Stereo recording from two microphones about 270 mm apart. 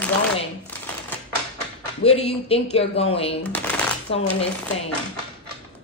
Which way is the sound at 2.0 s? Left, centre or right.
Left.